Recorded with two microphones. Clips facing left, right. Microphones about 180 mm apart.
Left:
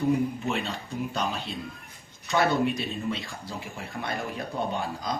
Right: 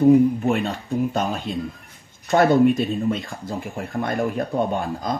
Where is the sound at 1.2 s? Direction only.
45° right (ahead or behind).